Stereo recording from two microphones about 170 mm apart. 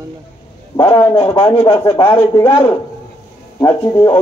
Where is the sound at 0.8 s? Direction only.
15° left (ahead or behind).